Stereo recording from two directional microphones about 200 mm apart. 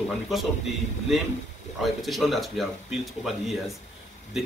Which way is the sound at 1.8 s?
Centre (ahead or behind).